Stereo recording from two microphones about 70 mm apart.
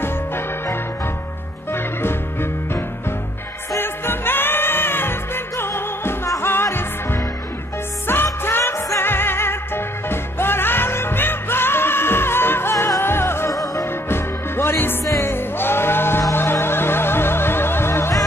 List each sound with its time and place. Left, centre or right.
1.7 s music: left
3.7 s music: left
13.5 s music: left
14.0 s music: left